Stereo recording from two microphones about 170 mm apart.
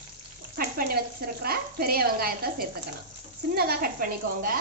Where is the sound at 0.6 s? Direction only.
60° right (ahead or behind).